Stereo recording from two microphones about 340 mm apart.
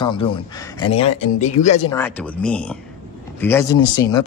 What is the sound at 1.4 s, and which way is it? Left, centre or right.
Speech, left.